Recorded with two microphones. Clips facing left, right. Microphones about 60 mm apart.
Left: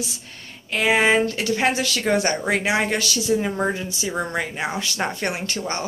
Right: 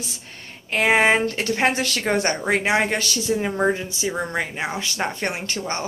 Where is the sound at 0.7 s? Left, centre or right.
Right.